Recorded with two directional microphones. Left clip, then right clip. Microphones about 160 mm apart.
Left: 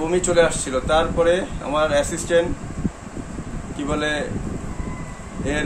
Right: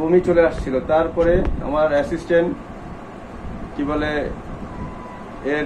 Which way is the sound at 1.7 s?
15° left (ahead or behind).